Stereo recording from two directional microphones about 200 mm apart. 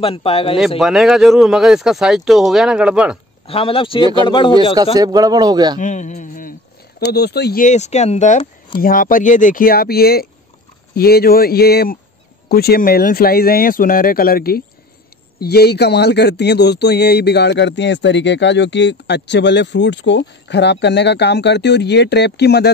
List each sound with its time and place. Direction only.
0.0 s speech: 30° left (ahead or behind)
0.7 s speech: centre (ahead or behind)
3.4 s speech: 30° left (ahead or behind)
4.9 s speech: 20° right (ahead or behind)
5.8 s speech: 40° left (ahead or behind)
7.0 s speech: 55° left (ahead or behind)
7.6 s speech: 35° left (ahead or behind); by 22.7 s 55° left (ahead or behind)